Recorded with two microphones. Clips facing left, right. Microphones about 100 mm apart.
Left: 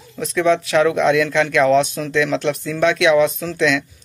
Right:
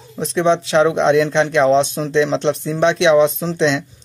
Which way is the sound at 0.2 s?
25° right (ahead or behind).